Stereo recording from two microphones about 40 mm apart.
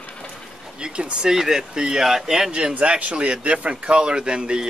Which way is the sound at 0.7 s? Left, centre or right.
Right.